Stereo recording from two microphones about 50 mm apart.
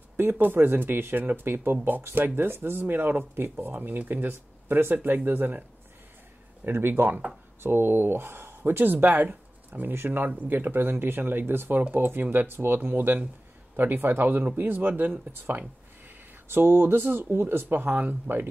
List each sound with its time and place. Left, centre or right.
0.2 s speech: right
7.6 s speech: right